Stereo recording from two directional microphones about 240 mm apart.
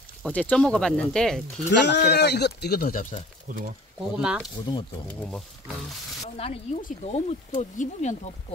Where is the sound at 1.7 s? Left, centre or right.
Left.